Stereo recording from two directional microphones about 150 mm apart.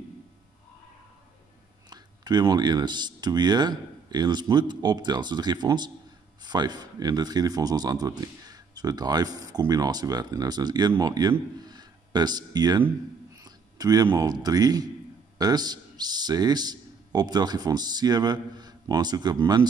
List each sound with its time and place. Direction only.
1.9 s a man's voice: 25° right (ahead or behind)